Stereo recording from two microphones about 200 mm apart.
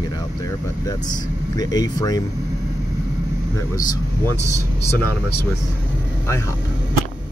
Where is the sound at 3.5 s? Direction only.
15° left (ahead or behind).